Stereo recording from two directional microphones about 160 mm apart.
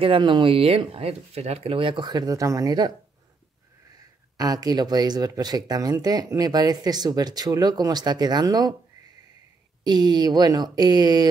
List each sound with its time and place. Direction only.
0.0 s speech: 30° right (ahead or behind)
4.4 s speech: 20° right (ahead or behind)
9.8 s speech: 25° right (ahead or behind)